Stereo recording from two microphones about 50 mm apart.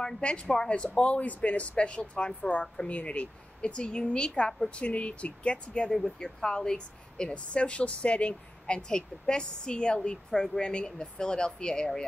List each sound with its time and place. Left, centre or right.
0.0 s a woman's voice: left
5.9 s a woman's voice: centre